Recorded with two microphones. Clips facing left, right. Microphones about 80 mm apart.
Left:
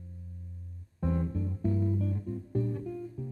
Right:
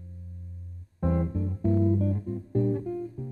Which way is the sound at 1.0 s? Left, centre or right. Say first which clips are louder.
Right 4 dB; right.